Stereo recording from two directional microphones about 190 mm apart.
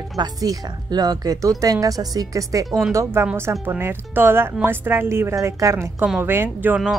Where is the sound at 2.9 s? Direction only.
10° right (ahead or behind).